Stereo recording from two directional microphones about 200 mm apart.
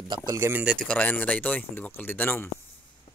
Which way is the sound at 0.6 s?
Centre (ahead or behind).